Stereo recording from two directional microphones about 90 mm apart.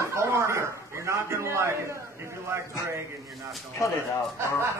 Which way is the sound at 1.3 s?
30° right (ahead or behind).